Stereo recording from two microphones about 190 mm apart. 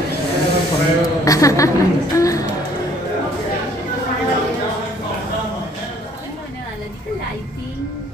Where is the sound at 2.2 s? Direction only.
15° left (ahead or behind).